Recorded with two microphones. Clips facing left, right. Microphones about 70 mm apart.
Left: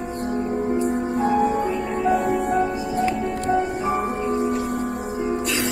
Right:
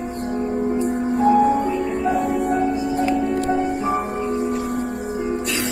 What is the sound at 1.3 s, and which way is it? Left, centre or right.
Music, right.